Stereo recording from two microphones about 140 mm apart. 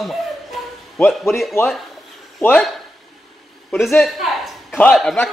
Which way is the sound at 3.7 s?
Centre (ahead or behind).